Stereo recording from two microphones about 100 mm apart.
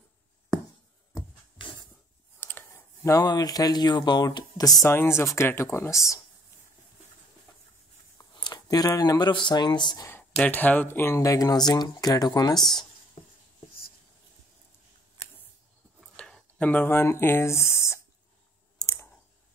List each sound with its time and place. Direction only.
2.4 s speech: 25° left (ahead or behind); by 4.8 s 40° left (ahead or behind)
4.8 s speech: 25° left (ahead or behind)
8.2 s speech: 40° left (ahead or behind)
10.4 s speech: 15° left (ahead or behind); by 12.5 s 40° left (ahead or behind)
16.2 s speech: 5° left (ahead or behind); by 18.0 s 25° left (ahead or behind)
18.8 s clicking: 35° left (ahead or behind)